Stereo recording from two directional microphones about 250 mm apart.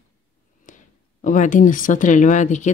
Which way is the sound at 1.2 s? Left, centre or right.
Left.